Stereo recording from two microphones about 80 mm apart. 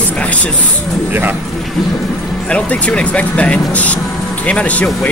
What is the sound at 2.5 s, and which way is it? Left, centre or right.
Speech, centre.